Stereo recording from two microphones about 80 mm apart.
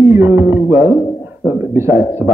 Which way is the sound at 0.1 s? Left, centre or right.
Right.